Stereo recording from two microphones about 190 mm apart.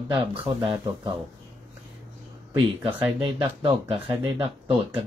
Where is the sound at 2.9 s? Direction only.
5° right (ahead or behind).